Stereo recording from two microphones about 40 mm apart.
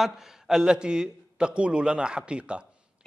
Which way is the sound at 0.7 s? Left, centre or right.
Centre.